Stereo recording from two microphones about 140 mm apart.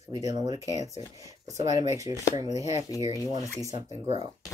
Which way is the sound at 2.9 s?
25° left (ahead or behind).